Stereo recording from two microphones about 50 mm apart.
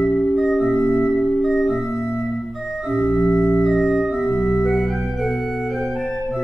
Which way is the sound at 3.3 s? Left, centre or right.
Left.